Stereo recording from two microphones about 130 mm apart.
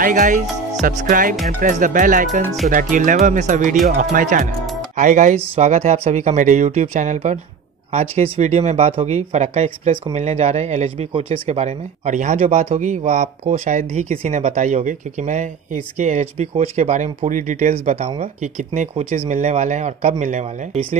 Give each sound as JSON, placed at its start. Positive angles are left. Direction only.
{"t": 0.0, "sound": "speech", "side_deg": -90}
{"t": 4.9, "sound": "speech", "side_deg": -70}
{"t": 7.9, "sound": "speech", "side_deg": -55}
{"t": 18.4, "sound": "speech", "side_deg": -75}
{"t": 18.9, "sound": "speech", "side_deg": -55}